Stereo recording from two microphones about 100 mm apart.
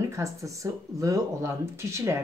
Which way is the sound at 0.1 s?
30° right (ahead or behind).